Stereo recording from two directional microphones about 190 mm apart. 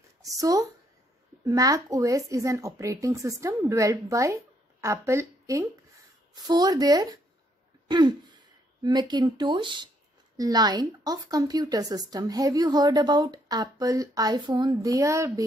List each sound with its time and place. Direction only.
0.2 s a woman's voice: 20° right (ahead or behind)